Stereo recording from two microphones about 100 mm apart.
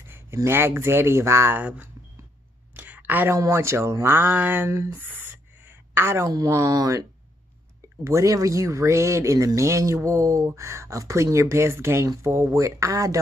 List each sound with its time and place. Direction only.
0.0 s speech: 25° right (ahead or behind)
1.6 s speech: 15° right (ahead or behind)
2.7 s a sound: 15° right (ahead or behind)
3.3 s speech: 25° right (ahead or behind)
6.3 s speech: 35° right (ahead or behind)
8.0 s speech: 30° right (ahead or behind)